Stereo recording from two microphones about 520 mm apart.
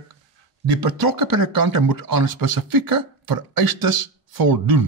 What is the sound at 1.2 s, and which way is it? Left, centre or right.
Speech, right.